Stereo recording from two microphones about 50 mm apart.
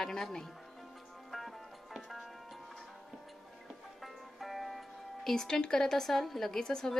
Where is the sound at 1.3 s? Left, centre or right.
Centre.